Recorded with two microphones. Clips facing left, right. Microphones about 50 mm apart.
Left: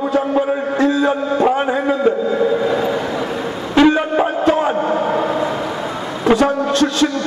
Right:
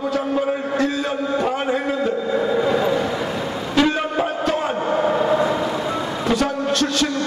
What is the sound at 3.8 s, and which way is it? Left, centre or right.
Wind instrument, centre.